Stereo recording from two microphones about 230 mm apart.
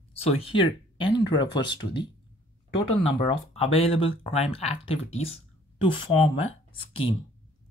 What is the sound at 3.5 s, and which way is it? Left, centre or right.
Speech, left.